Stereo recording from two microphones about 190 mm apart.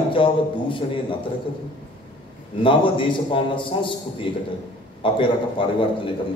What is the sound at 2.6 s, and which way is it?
A man's voice, 25° left (ahead or behind).